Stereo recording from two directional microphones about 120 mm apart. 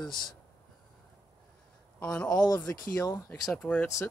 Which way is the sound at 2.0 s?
10° left (ahead or behind).